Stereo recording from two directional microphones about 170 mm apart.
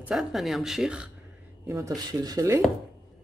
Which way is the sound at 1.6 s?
20° right (ahead or behind).